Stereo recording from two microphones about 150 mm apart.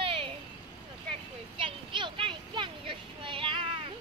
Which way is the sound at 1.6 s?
35° right (ahead or behind).